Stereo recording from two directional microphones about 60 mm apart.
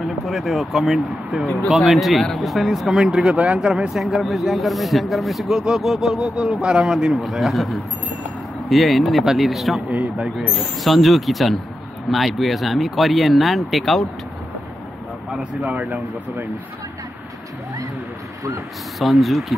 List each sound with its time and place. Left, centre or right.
0.2 s a man's voice: centre
9.8 s speech: right
10.8 s speech: centre
15.3 s speech: right
18.9 s speech: centre